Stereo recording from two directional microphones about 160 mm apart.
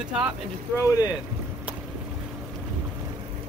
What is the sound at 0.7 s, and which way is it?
Speech, 20° left (ahead or behind).